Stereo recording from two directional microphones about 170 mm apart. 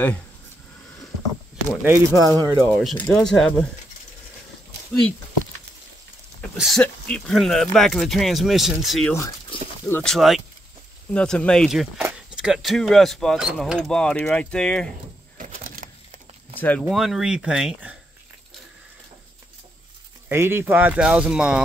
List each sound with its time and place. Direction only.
1.7 s speech: 10° right (ahead or behind)
2.6 s speech: 5° right (ahead or behind)
6.5 s speech: centre (ahead or behind)
15.3 s a sound: 50° right (ahead or behind)
16.5 s speech: 10° left (ahead or behind)
16.8 s speech: centre (ahead or behind)
20.2 s speech: 15° right (ahead or behind)